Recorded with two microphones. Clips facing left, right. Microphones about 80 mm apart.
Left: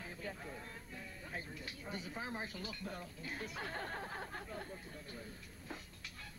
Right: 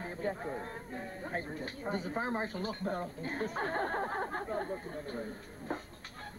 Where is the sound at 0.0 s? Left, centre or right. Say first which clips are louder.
Right 10 dB; right.